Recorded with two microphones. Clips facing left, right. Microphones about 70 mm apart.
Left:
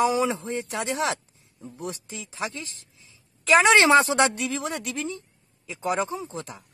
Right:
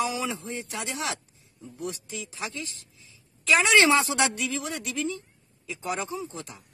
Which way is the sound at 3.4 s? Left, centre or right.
Left.